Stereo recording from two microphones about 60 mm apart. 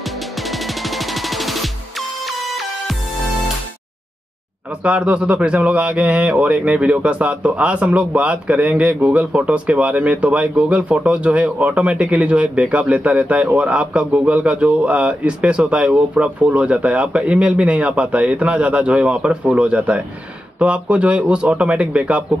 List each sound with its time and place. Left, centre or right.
0.0 s music: centre
4.6 s a man's voice: right